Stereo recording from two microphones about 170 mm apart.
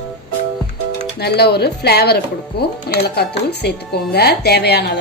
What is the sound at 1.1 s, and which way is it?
Speech, 70° left (ahead or behind).